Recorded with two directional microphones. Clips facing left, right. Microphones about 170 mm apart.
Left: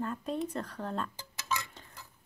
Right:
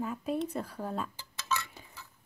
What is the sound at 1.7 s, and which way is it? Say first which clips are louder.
Tick-tock: right 1 dB; 10° right (ahead or behind).